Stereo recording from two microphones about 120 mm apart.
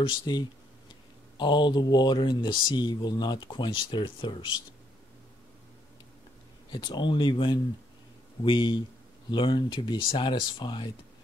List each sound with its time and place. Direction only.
0.2 s speech: 40° left (ahead or behind)
6.7 s speech: 40° left (ahead or behind)